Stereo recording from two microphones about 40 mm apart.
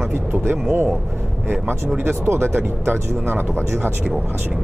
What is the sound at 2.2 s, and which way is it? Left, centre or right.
Speech, right.